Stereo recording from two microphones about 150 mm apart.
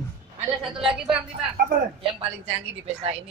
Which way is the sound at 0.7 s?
5° right (ahead or behind).